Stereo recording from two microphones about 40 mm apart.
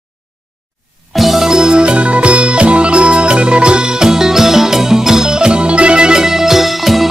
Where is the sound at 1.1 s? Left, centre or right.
Centre.